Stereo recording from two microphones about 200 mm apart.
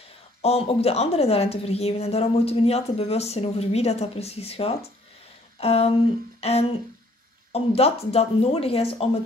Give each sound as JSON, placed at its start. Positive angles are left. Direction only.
{"t": 0.4, "sound": "a woman's voice", "side_deg": 30}